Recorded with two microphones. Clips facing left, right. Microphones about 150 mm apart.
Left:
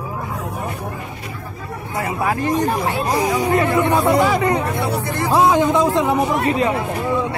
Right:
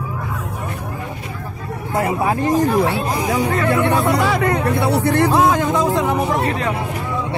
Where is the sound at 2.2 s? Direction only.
25° right (ahead or behind).